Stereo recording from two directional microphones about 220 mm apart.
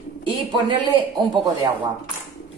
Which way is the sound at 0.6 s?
20° right (ahead or behind).